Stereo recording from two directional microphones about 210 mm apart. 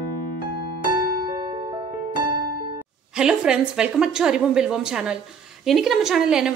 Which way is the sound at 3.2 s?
5° right (ahead or behind).